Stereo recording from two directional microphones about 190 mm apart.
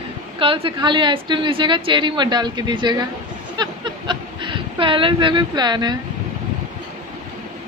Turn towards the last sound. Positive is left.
turn(degrees=-20)  # may be behind; listen again after turning